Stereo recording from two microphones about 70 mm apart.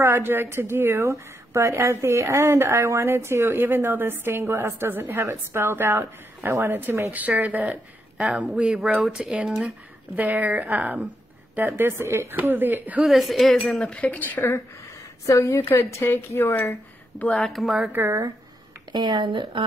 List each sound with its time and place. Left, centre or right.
0.0 s a woman's voice: right
3.9 s a woman's voice: right
5.1 s a woman's voice: right
7.1 s speech: right
8.2 s a woman's voice: centre; by 12.4 s right
12.4 s speech: right
13.0 s speech: centre
13.9 s speech: centre
15.2 s a woman's voice: left
15.6 s a woman's voice: left
17.4 s speech: centre
18.9 s speech: right